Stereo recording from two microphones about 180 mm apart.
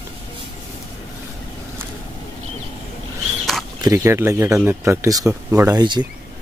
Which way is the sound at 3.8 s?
15° right (ahead or behind).